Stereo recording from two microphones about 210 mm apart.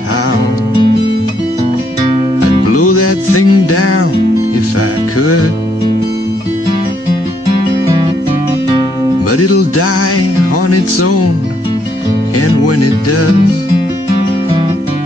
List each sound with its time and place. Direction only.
2.7 s music: 90° left
9.3 s music: 90° left
12.4 s music: 90° left